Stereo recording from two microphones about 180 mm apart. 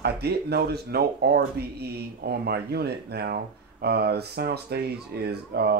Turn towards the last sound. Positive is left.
turn(degrees=-65)  # may be behind; listen again after turning